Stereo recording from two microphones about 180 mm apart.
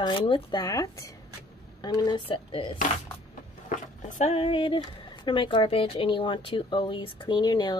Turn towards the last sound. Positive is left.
turn(degrees=25)  # may be behind; listen again after turning